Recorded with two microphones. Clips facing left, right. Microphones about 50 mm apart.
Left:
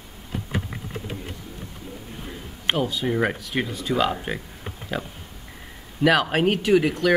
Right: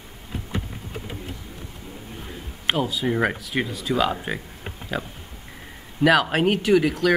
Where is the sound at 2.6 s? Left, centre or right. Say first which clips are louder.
Even; centre.